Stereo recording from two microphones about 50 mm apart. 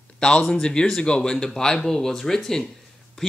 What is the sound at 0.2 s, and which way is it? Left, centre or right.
Speech, centre.